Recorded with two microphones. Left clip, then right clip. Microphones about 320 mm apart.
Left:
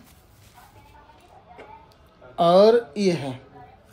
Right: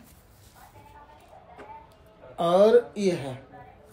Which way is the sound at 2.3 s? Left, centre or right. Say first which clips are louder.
Left 3 dB; left.